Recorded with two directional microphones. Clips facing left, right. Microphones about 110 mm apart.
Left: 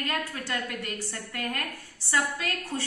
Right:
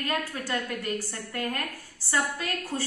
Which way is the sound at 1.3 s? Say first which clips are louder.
Right 3 dB; 30° right (ahead or behind).